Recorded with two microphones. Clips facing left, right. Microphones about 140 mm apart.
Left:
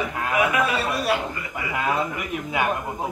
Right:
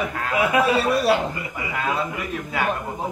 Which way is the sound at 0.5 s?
30° right (ahead or behind).